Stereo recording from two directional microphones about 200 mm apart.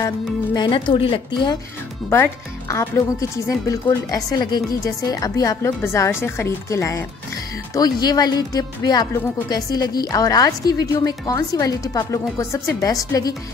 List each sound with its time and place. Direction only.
0.6 s speech: 25° left (ahead or behind)
2.0 s speech: 10° left (ahead or behind)